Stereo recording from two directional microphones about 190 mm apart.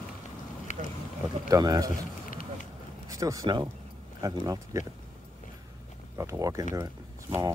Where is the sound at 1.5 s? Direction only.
20° right (ahead or behind).